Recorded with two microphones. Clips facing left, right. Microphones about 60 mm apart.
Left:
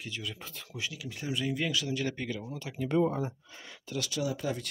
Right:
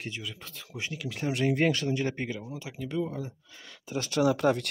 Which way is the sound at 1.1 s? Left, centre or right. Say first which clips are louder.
Right 6 dB; right.